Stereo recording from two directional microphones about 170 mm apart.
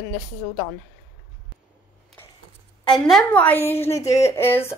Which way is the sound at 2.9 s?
Centre (ahead or behind).